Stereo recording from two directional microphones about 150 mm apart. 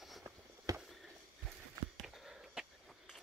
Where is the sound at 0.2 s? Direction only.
15° right (ahead or behind).